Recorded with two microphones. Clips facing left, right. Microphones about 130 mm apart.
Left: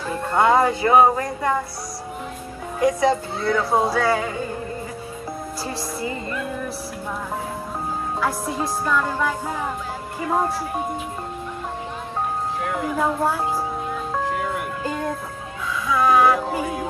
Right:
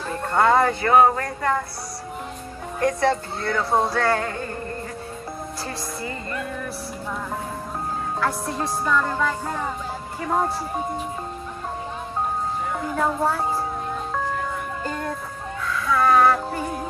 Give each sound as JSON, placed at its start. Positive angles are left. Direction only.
{"t": 0.1, "sound": "speech", "side_deg": 5}
{"t": 0.8, "sound": "speech", "side_deg": 15}
{"t": 2.8, "sound": "music", "side_deg": 10}
{"t": 8.2, "sound": "music", "side_deg": 5}
{"t": 12.8, "sound": "music", "side_deg": 5}